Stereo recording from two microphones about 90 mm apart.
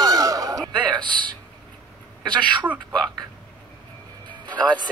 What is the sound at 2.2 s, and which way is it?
Speech, 60° right (ahead or behind).